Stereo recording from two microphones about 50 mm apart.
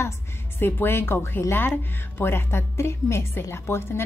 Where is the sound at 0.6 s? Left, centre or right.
Left.